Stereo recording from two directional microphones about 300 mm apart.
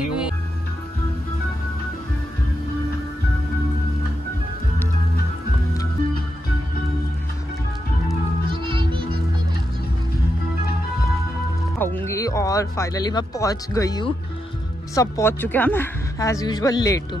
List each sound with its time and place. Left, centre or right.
8.5 s music: centre
11.8 s a woman's voice: centre